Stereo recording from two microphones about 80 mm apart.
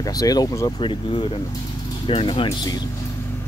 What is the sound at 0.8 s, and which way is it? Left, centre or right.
Speech, left.